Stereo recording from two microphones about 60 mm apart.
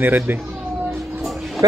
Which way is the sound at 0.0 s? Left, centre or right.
Right.